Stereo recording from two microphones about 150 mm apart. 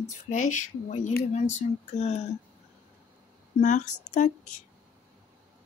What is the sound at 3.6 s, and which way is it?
Speech, 55° left (ahead or behind).